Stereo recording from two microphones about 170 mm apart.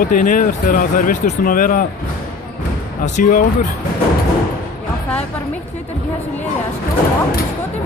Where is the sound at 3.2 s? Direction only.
50° left (ahead or behind).